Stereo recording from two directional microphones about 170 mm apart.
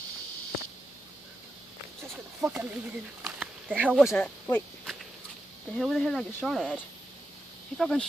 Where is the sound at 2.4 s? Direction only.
10° right (ahead or behind).